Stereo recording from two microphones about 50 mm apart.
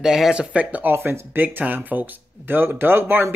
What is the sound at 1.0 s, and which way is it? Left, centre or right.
Speech, right.